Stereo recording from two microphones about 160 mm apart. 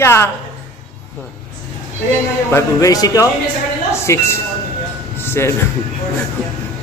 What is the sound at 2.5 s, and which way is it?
A man's voice, 20° left (ahead or behind).